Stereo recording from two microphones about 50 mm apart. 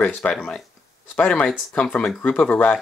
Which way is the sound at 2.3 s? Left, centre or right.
Left.